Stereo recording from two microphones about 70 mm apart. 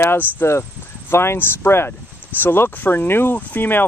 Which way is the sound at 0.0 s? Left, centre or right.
Left.